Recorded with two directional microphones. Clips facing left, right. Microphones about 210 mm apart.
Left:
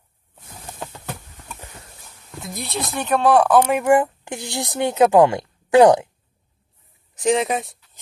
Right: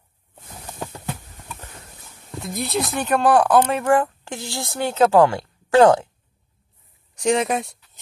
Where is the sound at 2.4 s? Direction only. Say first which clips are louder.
Right 4 dB; centre (ahead or behind).